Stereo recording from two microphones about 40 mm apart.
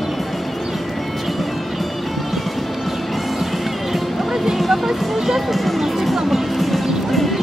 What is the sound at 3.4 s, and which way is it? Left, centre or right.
Music, centre.